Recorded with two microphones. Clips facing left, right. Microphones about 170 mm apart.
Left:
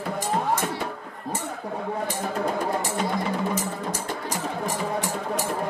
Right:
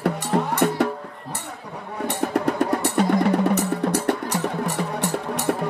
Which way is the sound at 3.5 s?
65° right (ahead or behind).